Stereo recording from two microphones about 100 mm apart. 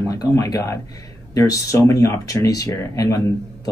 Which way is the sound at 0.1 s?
40° left (ahead or behind).